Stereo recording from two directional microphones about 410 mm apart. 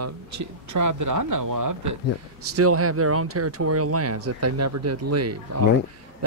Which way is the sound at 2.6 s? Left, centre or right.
Right.